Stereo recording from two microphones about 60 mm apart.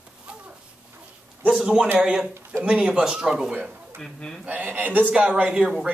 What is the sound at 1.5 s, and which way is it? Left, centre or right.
Speech, centre.